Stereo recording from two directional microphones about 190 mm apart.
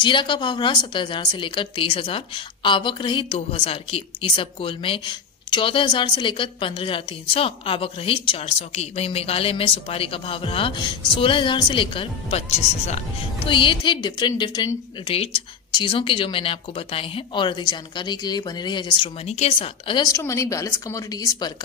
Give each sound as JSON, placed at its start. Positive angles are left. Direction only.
{"t": 0.0, "sound": "a woman's voice", "side_deg": 25}